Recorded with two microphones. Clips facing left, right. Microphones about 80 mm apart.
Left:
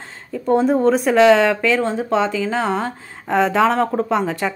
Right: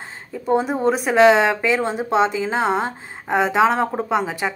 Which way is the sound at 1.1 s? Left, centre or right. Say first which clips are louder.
Even; centre.